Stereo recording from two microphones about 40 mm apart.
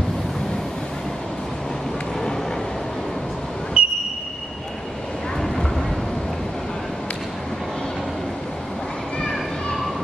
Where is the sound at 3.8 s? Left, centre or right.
Right.